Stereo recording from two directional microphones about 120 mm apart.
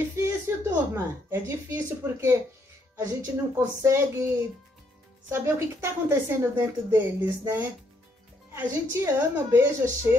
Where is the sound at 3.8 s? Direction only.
25° right (ahead or behind).